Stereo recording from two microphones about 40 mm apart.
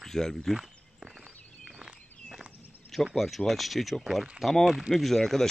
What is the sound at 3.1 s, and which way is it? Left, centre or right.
Speech, centre.